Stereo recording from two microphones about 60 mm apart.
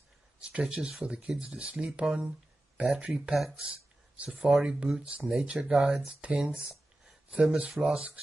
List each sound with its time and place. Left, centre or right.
0.4 s speech: centre